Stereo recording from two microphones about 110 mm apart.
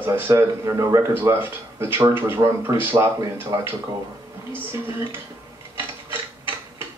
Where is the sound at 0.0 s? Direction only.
20° right (ahead or behind).